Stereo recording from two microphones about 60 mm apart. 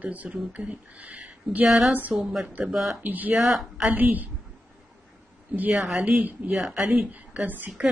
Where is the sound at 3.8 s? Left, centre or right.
Right.